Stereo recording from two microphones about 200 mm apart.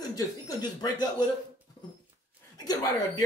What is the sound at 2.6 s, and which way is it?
Speech, 20° left (ahead or behind).